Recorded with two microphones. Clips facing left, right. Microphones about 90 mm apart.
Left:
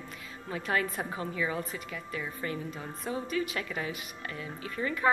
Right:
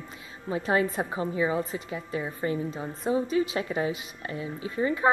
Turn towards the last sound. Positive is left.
turn(degrees=-25)  # may be behind; listen again after turning